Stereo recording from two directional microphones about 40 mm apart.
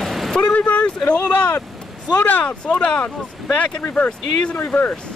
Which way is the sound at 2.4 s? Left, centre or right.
Left.